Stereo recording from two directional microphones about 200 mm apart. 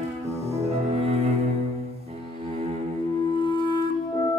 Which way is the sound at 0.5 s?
30° right (ahead or behind).